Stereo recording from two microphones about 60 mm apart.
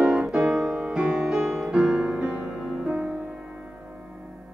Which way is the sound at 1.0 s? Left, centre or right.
Centre.